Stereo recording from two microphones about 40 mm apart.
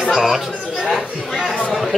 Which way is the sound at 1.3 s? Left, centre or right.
Centre.